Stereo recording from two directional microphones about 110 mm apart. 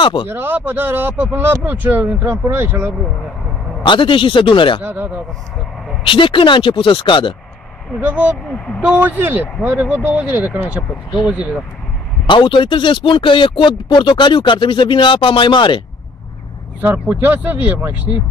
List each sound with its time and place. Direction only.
0.0 s a man's voice: 50° left (ahead or behind)
0.3 s a man's voice: 20° right (ahead or behind)
3.8 s speech: 50° left (ahead or behind)
4.8 s speech: 15° right (ahead or behind)
6.0 s speech: 50° left (ahead or behind)
8.0 s speech: 15° right (ahead or behind)
12.3 s speech: 50° left (ahead or behind)
16.8 s speech: 15° right (ahead or behind)